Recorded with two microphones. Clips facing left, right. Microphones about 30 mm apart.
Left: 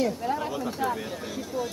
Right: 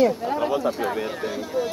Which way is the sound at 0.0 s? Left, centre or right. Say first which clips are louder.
Right 6 dB; centre.